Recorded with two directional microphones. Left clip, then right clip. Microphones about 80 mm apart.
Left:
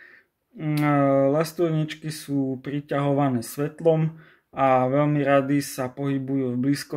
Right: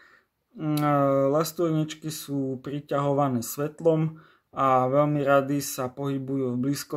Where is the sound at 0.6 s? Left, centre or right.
Right.